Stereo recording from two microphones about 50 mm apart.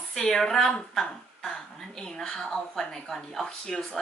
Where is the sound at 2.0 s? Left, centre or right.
Centre.